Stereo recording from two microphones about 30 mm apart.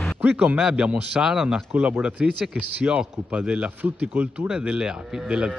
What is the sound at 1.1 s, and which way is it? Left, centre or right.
Speech, right.